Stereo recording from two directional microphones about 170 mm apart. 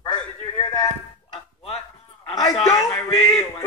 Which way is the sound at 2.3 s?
25° left (ahead or behind).